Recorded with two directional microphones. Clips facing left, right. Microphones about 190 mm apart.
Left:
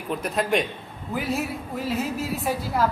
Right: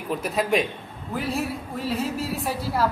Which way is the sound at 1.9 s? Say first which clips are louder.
Right 1 dB; centre (ahead or behind).